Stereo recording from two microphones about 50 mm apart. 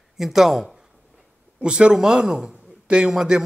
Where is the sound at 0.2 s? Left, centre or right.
Centre.